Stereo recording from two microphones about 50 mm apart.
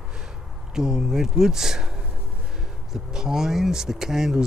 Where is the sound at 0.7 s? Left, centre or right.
Centre.